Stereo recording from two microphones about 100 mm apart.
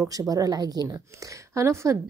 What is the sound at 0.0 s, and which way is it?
A woman's voice, 35° right (ahead or behind).